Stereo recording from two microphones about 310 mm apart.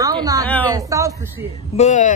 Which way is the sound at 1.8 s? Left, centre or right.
Left.